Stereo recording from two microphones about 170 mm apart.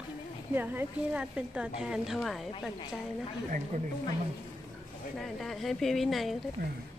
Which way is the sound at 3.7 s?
45° right (ahead or behind).